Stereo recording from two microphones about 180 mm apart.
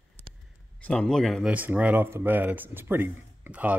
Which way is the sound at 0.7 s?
5° left (ahead or behind).